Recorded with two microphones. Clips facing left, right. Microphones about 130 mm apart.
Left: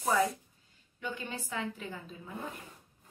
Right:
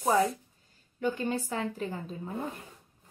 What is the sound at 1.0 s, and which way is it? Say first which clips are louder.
Speech: right 9 dB; 40° right (ahead or behind).